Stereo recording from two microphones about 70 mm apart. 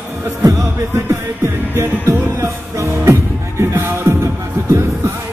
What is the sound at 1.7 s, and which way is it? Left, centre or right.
Music, right.